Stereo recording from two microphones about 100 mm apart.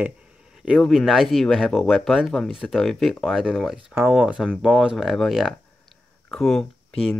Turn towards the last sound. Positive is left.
turn(degrees=5)  # may be behind; listen again after turning